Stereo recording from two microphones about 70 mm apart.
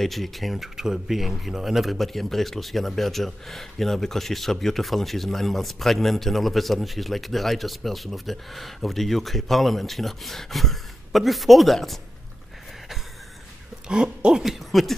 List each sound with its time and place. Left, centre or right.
0.0 s speech: centre
13.8 s speech: centre